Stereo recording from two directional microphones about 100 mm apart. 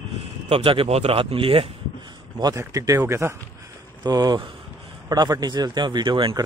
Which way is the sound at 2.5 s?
35° right (ahead or behind).